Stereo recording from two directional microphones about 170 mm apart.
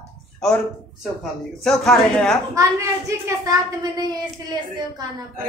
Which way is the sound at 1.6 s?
Centre (ahead or behind).